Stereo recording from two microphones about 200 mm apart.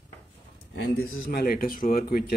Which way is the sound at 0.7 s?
60° left (ahead or behind).